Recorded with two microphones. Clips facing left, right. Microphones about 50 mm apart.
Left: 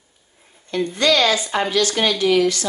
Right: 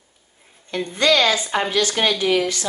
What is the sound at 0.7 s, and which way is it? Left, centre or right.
A woman's voice, right.